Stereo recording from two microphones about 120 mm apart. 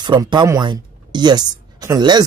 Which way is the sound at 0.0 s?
40° right (ahead or behind).